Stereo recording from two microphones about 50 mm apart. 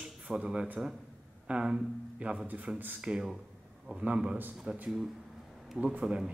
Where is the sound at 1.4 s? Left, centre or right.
Centre.